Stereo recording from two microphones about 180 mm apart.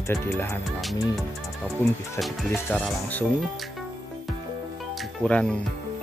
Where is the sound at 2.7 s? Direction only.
5° left (ahead or behind).